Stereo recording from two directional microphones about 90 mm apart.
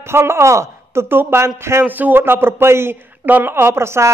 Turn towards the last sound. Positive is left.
turn(degrees=-30)  # may be behind; listen again after turning